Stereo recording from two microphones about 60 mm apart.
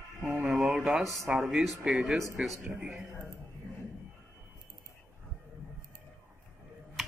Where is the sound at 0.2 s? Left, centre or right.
Centre.